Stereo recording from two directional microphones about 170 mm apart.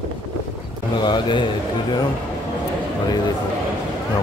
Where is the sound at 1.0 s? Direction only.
25° left (ahead or behind).